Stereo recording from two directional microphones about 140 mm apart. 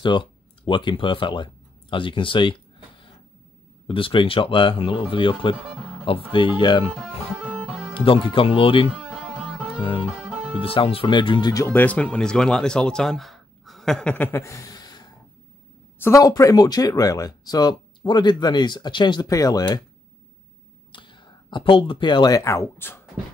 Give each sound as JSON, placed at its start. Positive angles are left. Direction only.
{"t": 0.0, "sound": "speech", "side_deg": 35}
{"t": 3.8, "sound": "speech", "side_deg": 40}
{"t": 6.9, "sound": "music", "side_deg": -10}
{"t": 7.9, "sound": "speech", "side_deg": 40}
{"t": 8.9, "sound": "music", "side_deg": -5}
{"t": 9.8, "sound": "music", "side_deg": 40}
{"t": 10.1, "sound": "music", "side_deg": -5}
{"t": 10.6, "sound": "speech", "side_deg": 40}
{"t": 11.5, "sound": "speech", "side_deg": 15}
{"t": 20.9, "sound": "speech", "side_deg": 35}